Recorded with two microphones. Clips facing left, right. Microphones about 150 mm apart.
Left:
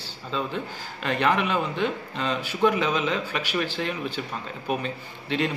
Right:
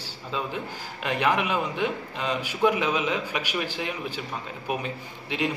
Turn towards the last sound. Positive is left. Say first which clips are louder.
# left 3 dB
turn(degrees=-10)  # may be behind; listen again after turning